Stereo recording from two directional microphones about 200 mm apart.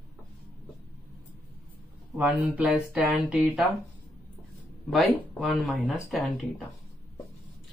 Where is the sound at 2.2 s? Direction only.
10° right (ahead or behind).